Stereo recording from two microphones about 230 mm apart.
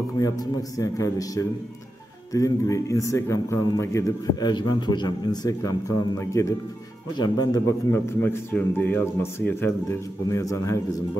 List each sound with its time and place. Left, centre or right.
0.2 s a man's voice: centre